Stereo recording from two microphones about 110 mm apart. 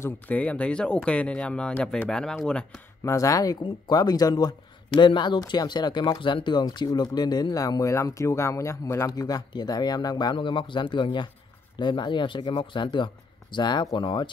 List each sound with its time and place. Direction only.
0.0 s speech: 15° left (ahead or behind)
3.0 s speech: 30° left (ahead or behind); by 14.3 s 45° left (ahead or behind)